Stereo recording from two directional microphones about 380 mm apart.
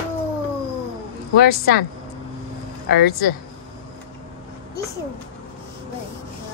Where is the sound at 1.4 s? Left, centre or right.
Left.